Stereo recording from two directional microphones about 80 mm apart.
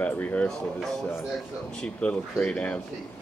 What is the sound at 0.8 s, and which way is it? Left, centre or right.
A man's voice, centre.